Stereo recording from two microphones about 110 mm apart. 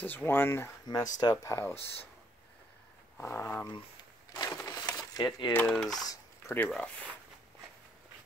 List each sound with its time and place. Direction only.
0.0 s speech: 15° left (ahead or behind)
0.8 s speech: 35° left (ahead or behind)
3.2 s speech: 20° left (ahead or behind)
4.3 s crushing: 35° left (ahead or behind)
4.9 s a sound: 35° left (ahead or behind)
5.7 s speech: 5° left (ahead or behind)
6.4 s speech: 25° left (ahead or behind)